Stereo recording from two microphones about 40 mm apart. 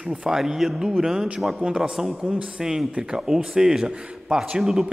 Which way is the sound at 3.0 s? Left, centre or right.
Centre.